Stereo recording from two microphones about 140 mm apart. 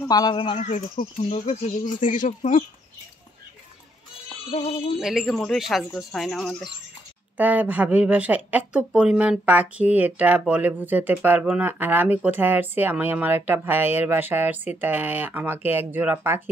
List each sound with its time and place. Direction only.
0.1 s speech: 30° left (ahead or behind)
0.7 s speech: 60° left (ahead or behind)
4.5 s speech: 45° left (ahead or behind)
5.0 s speech: centre (ahead or behind)
7.3 s speech: 10° right (ahead or behind)